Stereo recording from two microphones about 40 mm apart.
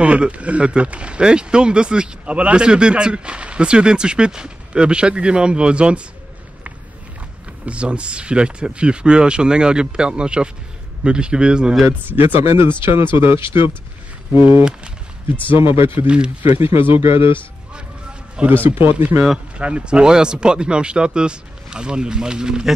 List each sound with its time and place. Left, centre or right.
0.0 s speech: right
7.6 s speech: right
12.1 s speech: right
14.3 s speech: right
14.6 s speech: right
15.5 s speech: right
18.4 s speech: right
18.8 s speech: right
19.5 s speech: right